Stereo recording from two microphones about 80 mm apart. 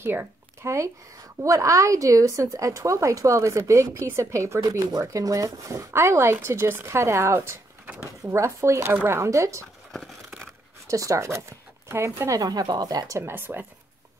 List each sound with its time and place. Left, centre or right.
0.0 s a woman's voice: right
4.7 s a woman's voice: right
10.9 s speech: right
12.4 s speech: right
13.2 s speech: right